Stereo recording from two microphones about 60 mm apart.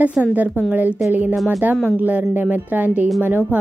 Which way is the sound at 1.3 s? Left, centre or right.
Centre.